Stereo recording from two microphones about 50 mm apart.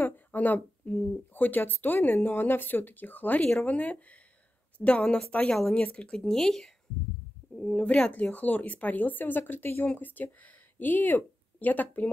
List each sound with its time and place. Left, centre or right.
0.0 s a sound: left
1.6 s speech: left
6.2 s speech: centre
7.7 s speech: left